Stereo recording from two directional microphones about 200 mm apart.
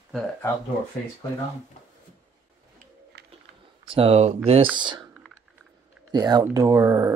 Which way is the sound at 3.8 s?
25° right (ahead or behind).